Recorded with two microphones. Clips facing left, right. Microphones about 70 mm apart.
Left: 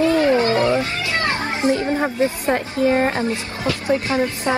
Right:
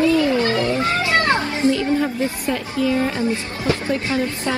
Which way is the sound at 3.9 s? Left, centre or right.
Left.